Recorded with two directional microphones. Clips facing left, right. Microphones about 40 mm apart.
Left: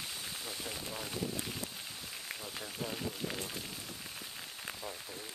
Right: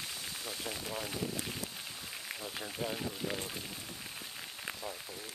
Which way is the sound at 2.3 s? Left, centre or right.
Centre.